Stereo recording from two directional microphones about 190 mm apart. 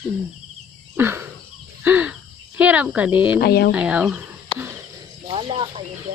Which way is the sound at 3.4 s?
55° left (ahead or behind).